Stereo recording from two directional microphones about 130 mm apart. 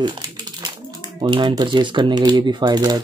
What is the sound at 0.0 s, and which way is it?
Speech, 35° right (ahead or behind).